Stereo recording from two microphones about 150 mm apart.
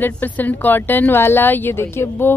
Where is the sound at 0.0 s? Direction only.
10° left (ahead or behind).